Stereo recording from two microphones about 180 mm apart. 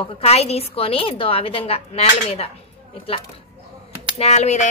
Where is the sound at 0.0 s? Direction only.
35° left (ahead or behind).